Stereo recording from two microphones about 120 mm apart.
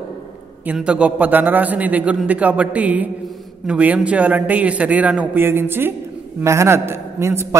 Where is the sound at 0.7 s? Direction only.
10° right (ahead or behind).